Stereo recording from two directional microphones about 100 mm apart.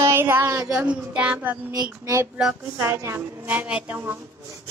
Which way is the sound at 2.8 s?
30° right (ahead or behind).